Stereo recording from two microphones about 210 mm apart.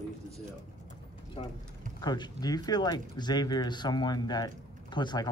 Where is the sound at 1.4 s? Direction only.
25° left (ahead or behind).